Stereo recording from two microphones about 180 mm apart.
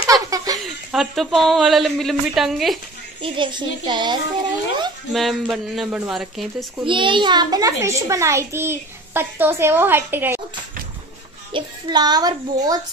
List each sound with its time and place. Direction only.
0.0 s a sound: 20° right (ahead or behind)
0.7 s speech: centre (ahead or behind)
3.2 s a child's voice: 25° right (ahead or behind)
5.1 s speech: centre (ahead or behind)
6.9 s a child's voice: 25° right (ahead or behind); by 10.4 s 10° right (ahead or behind)
11.5 s a child's voice: 25° right (ahead or behind)